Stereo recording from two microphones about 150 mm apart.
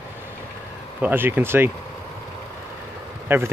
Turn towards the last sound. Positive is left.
turn(degrees=-15)  # may be behind; listen again after turning